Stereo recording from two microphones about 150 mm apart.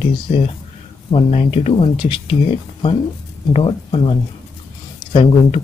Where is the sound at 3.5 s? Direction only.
35° left (ahead or behind).